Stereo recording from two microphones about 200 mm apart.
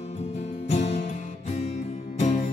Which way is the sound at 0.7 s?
35° left (ahead or behind).